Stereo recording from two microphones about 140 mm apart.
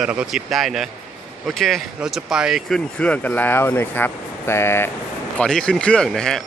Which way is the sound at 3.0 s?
10° left (ahead or behind).